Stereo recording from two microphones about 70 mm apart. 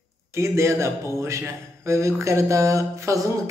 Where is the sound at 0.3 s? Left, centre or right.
Right.